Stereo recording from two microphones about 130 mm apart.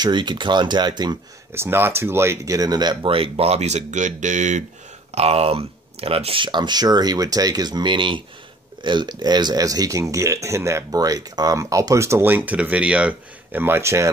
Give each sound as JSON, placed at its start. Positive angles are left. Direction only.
{"t": 0.0, "sound": "speech", "side_deg": -35}
{"t": 1.5, "sound": "speech", "side_deg": -20}
{"t": 5.1, "sound": "speech", "side_deg": -50}